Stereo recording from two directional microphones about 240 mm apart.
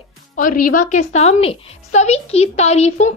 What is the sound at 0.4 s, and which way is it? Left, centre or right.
A woman's voice, left.